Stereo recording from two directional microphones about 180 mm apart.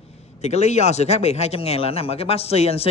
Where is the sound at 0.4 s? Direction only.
40° left (ahead or behind).